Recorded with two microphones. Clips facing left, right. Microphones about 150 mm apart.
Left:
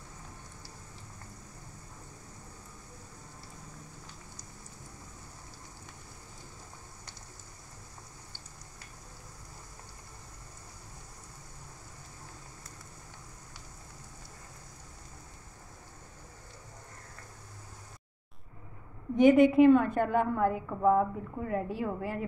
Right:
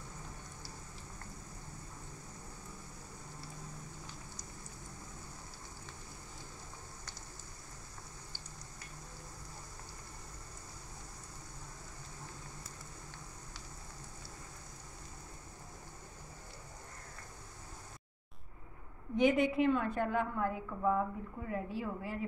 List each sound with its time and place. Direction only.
19.1 s a woman's voice: 50° left (ahead or behind)